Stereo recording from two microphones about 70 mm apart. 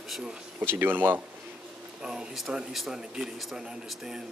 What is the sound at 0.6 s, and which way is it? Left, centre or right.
Speech, right.